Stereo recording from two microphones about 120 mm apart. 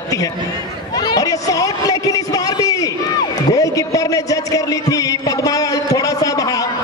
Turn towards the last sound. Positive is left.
turn(degrees=30)  # may be behind; listen again after turning